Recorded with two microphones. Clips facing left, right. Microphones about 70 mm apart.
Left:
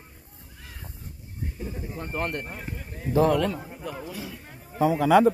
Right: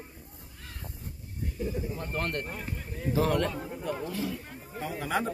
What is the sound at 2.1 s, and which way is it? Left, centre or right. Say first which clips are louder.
Speech: left 4 dB; centre.